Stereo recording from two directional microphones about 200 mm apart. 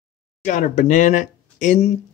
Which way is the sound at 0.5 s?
40° left (ahead or behind).